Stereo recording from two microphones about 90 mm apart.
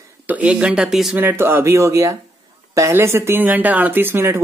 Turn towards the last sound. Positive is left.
turn(degrees=-25)  # may be behind; listen again after turning